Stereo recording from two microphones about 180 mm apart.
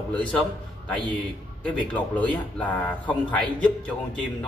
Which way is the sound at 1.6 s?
10° left (ahead or behind).